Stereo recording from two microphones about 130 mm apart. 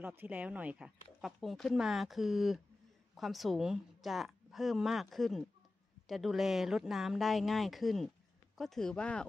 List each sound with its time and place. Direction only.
0.0 s speech: 15° right (ahead or behind); by 9.2 s 5° left (ahead or behind)